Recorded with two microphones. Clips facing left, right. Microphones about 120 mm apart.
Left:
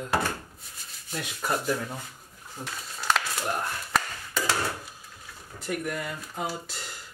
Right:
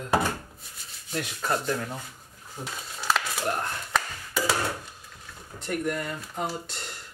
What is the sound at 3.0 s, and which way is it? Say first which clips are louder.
Crumpling: even; 5° right (ahead or behind).